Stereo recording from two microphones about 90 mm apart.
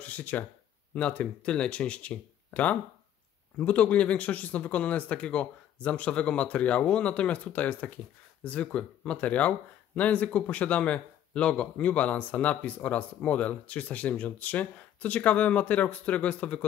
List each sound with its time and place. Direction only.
0.0 s speech: 15° left (ahead or behind)